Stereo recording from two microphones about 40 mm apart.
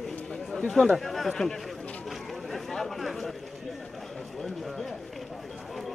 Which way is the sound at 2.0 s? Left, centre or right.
Centre.